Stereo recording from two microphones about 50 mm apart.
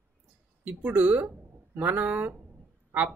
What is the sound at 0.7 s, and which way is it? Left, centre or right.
Speech, right.